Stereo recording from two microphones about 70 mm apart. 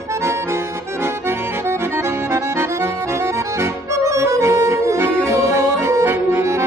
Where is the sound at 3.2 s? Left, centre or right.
Right.